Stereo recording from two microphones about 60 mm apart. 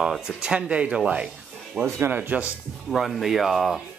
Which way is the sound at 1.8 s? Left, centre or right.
Centre.